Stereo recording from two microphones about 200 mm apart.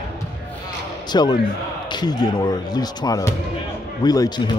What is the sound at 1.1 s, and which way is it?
Speech, 20° left (ahead or behind).